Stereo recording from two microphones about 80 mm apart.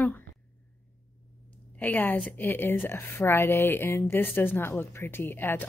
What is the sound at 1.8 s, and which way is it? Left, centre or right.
A woman's voice, left.